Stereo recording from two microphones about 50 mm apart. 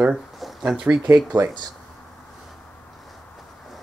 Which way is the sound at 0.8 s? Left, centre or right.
Right.